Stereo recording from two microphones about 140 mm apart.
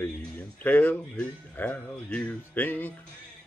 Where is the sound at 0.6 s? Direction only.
10° left (ahead or behind).